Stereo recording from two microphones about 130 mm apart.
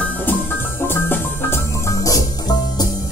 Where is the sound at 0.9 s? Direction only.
15° left (ahead or behind).